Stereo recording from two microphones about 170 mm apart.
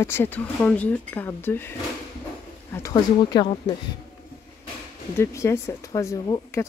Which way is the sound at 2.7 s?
20° left (ahead or behind).